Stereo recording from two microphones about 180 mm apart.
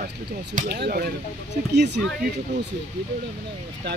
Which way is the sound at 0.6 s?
60° right (ahead or behind).